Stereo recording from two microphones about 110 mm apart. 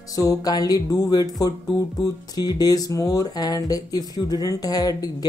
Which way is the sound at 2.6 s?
35° left (ahead or behind).